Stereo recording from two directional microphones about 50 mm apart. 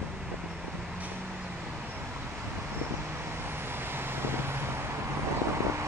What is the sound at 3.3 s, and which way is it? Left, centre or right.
Vehicle, right.